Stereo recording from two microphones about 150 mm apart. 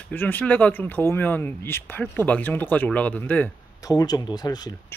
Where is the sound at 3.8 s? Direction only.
25° left (ahead or behind).